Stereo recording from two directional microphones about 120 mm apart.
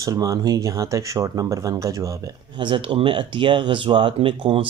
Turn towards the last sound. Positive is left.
turn(degrees=-45)  # may be behind; listen again after turning